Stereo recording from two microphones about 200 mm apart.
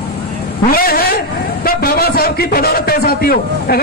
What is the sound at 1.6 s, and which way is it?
A man's voice, 50° left (ahead or behind).